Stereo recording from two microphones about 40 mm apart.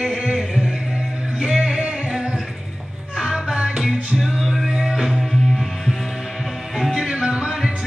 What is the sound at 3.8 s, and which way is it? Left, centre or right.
Music, centre.